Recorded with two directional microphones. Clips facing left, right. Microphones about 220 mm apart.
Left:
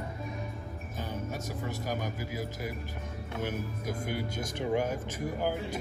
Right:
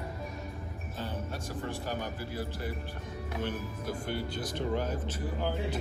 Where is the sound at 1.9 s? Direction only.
10° left (ahead or behind).